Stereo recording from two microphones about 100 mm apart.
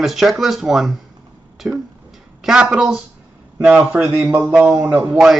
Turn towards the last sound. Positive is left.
turn(degrees=-20)  # may be behind; listen again after turning